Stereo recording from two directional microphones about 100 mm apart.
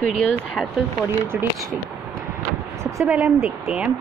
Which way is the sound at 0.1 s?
10° left (ahead or behind).